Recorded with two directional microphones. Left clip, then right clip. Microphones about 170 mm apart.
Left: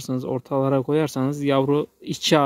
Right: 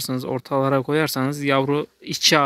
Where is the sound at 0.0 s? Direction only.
15° left (ahead or behind).